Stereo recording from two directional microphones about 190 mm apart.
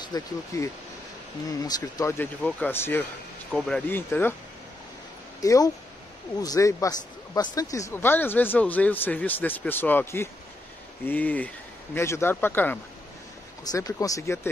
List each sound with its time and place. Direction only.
0.0 s speech: 20° left (ahead or behind)
5.4 s speech: 20° left (ahead or behind)